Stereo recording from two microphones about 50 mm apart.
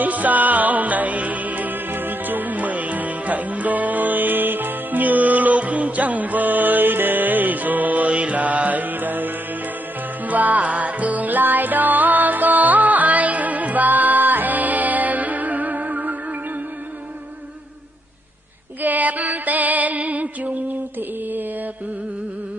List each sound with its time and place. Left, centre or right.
0.0 s music: right
18.8 s music: right